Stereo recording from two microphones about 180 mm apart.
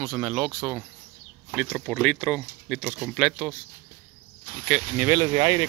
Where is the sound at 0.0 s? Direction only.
5° right (ahead or behind).